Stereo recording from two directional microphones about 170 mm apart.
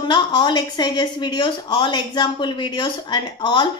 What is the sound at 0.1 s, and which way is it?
A woman's voice, 25° left (ahead or behind).